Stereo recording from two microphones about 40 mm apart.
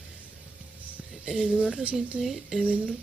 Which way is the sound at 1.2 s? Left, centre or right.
Centre.